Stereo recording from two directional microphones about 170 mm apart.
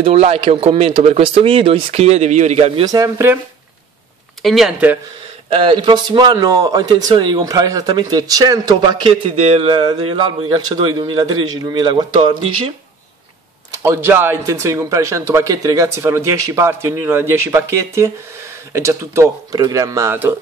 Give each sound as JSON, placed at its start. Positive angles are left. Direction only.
{"t": 0.0, "sound": "speech", "side_deg": -35}
{"t": 2.8, "sound": "speech", "side_deg": -20}
{"t": 4.4, "sound": "speech", "side_deg": 0}
{"t": 5.6, "sound": "speech", "side_deg": -30}
{"t": 13.8, "sound": "speech", "side_deg": -15}